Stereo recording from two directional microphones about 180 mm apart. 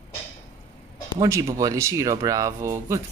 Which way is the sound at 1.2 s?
20° right (ahead or behind).